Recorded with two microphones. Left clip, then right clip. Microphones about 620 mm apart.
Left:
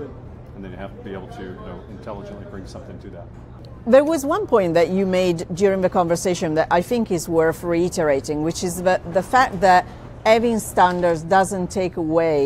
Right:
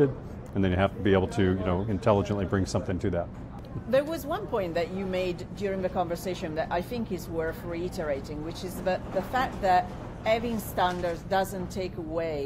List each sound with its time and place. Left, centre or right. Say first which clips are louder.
0.6 s speech: right 9 dB; right
3.9 s speech: left 11 dB; left